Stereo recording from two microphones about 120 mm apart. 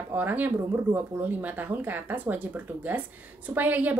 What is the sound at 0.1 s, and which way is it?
A woman's voice, 15° right (ahead or behind).